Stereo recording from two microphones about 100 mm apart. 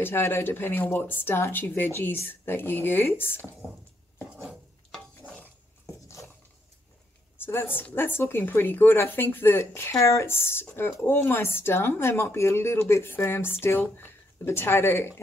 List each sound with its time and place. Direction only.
0.0 s speech: 25° left (ahead or behind)
6.0 s a sound: 30° left (ahead or behind)
7.3 s speech: 25° left (ahead or behind)